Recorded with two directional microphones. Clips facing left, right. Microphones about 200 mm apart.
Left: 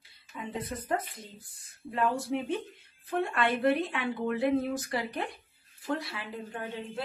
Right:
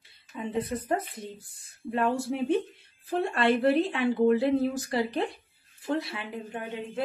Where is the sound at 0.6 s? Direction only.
30° right (ahead or behind).